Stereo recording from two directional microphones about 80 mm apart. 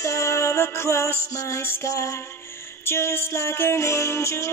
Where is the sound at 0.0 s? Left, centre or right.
Left.